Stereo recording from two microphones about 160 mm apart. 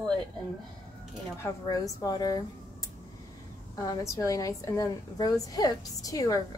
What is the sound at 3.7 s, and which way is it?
A woman's voice, 20° left (ahead or behind).